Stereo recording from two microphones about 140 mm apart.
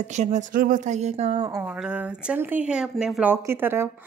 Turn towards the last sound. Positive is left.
turn(degrees=-15)  # may be behind; listen again after turning